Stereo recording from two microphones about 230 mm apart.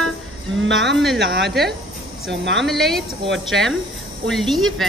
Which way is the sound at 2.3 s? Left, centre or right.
Right.